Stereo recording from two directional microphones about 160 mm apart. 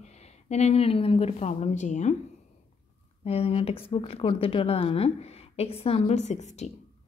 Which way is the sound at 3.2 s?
40° left (ahead or behind).